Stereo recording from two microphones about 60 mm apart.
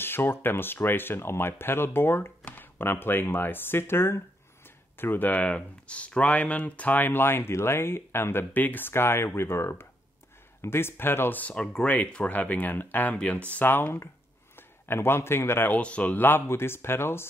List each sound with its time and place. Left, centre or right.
0.0 s speech: left
11.4 s speech: left
15.7 s speech: left